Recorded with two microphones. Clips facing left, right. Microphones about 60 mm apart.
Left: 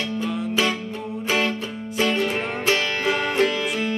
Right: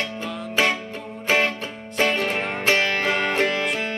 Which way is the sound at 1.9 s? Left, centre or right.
Right.